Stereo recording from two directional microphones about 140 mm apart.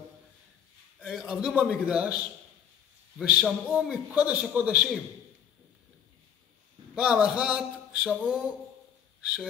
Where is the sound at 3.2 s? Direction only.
10° right (ahead or behind).